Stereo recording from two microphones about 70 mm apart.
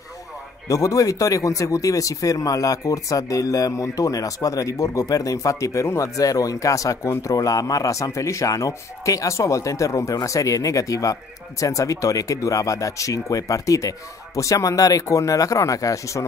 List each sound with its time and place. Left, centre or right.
0.7 s speech: left